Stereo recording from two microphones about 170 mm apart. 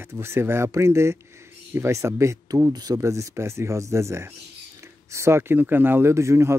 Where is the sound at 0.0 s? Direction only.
15° right (ahead or behind).